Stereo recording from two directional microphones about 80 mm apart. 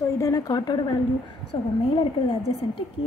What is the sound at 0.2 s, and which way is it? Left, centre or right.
Speech, left.